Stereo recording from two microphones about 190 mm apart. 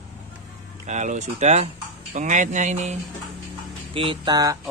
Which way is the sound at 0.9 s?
40° right (ahead or behind).